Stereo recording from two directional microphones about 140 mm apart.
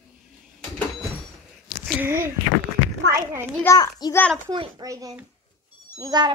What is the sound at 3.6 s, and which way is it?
Speech, 25° left (ahead or behind).